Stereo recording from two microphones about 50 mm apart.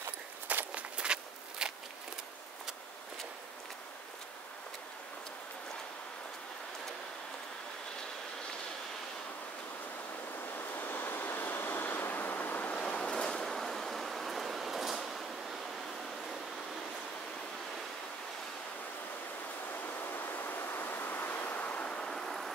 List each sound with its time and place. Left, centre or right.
0.5 s walk: right
0.9 s walk: centre
10.5 s vehicle: left
12.8 s a sound: centre
19.9 s pink noise: left; by 22.5 s centre